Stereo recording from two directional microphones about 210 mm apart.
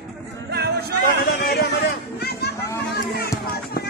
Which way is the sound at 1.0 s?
50° left (ahead or behind).